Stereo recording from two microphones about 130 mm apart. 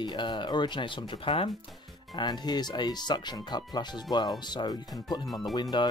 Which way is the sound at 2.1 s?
30° left (ahead or behind).